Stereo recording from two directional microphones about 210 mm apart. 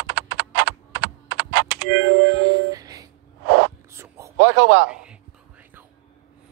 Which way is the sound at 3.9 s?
15° right (ahead or behind).